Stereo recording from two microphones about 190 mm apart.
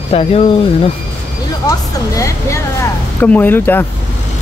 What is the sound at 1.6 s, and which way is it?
Speech, 20° left (ahead or behind).